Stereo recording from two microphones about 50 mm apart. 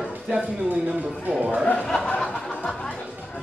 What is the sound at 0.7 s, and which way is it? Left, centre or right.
Speech, right.